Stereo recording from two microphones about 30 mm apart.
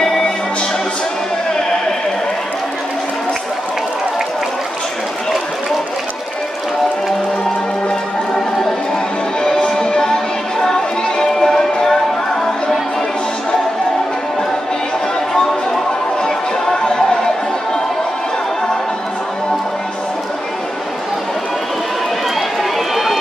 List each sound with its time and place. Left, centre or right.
10.6 s music: centre
22.6 s run: centre